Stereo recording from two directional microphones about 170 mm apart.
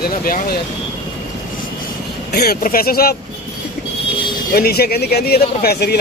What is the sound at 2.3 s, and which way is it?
Speech, 65° left (ahead or behind).